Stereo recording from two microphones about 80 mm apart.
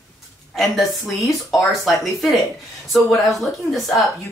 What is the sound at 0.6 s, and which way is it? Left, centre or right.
Speech, centre.